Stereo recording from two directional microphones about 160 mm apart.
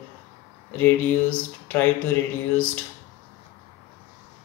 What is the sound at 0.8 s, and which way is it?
Speech, 10° left (ahead or behind).